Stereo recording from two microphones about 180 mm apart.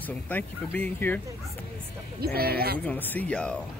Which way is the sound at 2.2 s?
60° right (ahead or behind).